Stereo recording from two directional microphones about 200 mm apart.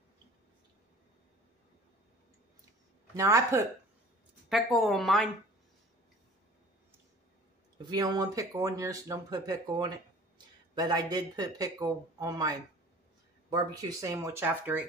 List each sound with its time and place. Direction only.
3.2 s speech: 15° right (ahead or behind)
4.5 s speech: centre (ahead or behind)
7.9 s speech: 20° right (ahead or behind)